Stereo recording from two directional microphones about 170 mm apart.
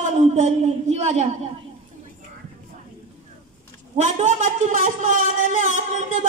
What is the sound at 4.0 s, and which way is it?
A man's voice, 45° right (ahead or behind).